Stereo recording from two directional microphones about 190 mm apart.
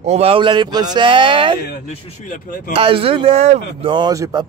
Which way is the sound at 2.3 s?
45° left (ahead or behind).